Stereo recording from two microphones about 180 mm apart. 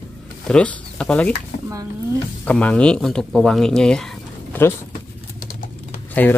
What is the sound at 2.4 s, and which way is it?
Speech, 5° left (ahead or behind).